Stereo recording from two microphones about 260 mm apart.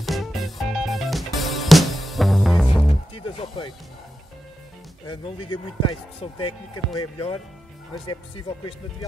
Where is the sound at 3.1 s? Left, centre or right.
Left.